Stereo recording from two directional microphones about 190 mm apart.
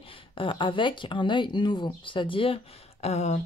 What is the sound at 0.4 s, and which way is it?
A woman's voice, 25° left (ahead or behind).